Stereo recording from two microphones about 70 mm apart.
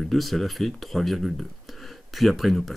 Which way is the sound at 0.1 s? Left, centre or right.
Centre.